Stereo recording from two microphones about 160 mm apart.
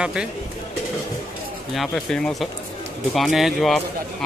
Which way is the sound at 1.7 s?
Centre (ahead or behind).